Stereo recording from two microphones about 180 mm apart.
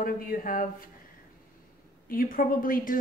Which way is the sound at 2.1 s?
55° left (ahead or behind).